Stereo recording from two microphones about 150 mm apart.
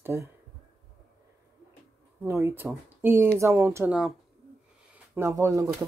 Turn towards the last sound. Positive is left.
turn(degrees=-20)  # may be behind; listen again after turning